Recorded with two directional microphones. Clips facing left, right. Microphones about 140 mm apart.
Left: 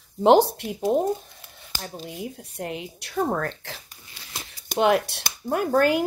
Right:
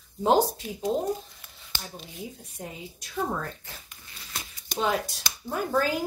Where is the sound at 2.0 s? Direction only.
70° left (ahead or behind).